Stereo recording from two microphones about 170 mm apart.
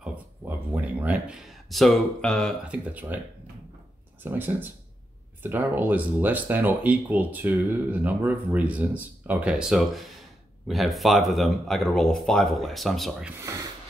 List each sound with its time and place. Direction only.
0.0 s speech: 10° right (ahead or behind)
2.7 s speech: 10° right (ahead or behind)
4.2 s speech: 10° right (ahead or behind)
13.4 s speech: 20° right (ahead or behind)